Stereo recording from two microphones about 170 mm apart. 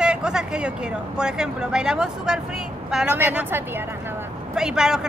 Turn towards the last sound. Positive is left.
turn(degrees=-5)  # may be behind; listen again after turning